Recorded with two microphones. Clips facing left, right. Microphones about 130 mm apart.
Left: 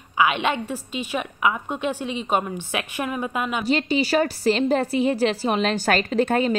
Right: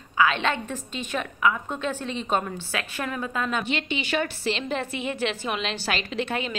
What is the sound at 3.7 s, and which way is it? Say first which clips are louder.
A woman's voice: left 7 dB; 40° left (ahead or behind).